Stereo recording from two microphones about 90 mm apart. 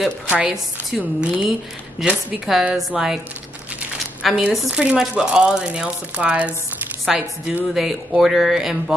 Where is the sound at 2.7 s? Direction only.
5° right (ahead or behind).